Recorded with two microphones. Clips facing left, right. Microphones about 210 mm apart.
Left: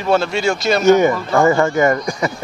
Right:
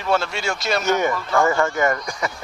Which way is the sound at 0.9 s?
20° left (ahead or behind).